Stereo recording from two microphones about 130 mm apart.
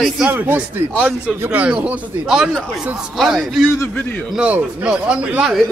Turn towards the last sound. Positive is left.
turn(degrees=-5)  # may be behind; listen again after turning